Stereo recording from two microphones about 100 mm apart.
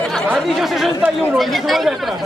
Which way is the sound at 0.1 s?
Centre (ahead or behind).